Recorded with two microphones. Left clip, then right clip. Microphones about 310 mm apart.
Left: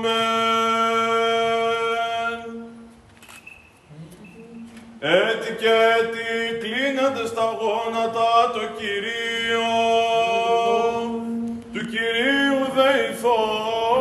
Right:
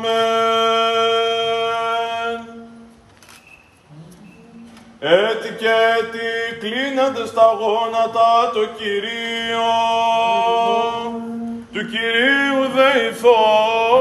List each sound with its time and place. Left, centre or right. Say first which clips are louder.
0.0 s mantra: right 4 dB; right
5.0 s mantra: right 4 dB; centre
11.7 s male singing: right 4 dB; centre